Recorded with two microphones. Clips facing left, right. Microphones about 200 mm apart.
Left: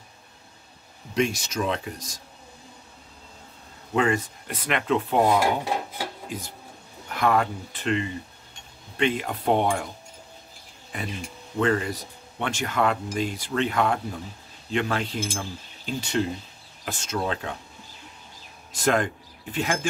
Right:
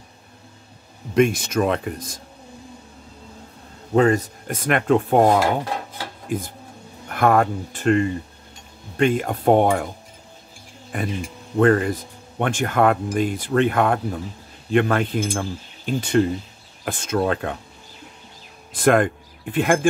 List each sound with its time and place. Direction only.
1.1 s speech: 55° right (ahead or behind)
3.9 s speech: 40° right (ahead or behind)
10.9 s speech: 50° right (ahead or behind)
18.7 s speech: 55° right (ahead or behind)